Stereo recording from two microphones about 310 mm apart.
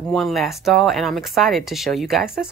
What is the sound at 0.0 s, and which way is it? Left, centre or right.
Speech, centre.